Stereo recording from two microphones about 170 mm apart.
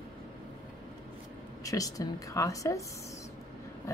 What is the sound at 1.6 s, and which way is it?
Speech, 20° left (ahead or behind).